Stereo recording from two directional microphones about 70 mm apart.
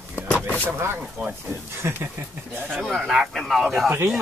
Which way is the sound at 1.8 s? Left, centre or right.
Right.